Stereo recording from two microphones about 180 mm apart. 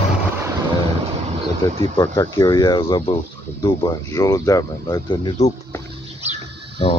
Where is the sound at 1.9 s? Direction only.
15° left (ahead or behind).